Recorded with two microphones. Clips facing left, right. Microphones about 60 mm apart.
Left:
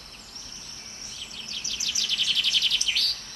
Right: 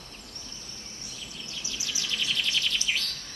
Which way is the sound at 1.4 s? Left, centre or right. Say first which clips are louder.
Left 2 dB; right.